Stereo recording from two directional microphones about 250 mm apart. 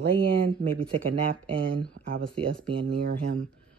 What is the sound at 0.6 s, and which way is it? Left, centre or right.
Speech, right.